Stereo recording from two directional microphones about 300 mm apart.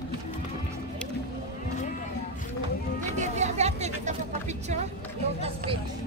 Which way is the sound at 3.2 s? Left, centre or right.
Right.